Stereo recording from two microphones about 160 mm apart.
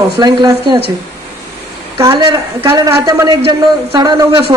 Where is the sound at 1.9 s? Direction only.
20° right (ahead or behind).